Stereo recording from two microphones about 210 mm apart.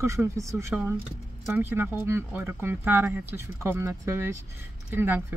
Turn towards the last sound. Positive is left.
turn(degrees=-10)  # may be behind; listen again after turning